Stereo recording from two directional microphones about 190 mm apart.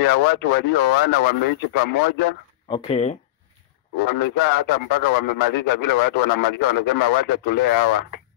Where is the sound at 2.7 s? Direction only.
35° left (ahead or behind).